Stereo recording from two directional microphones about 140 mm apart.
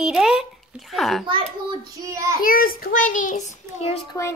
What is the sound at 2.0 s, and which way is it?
Speech, 20° right (ahead or behind).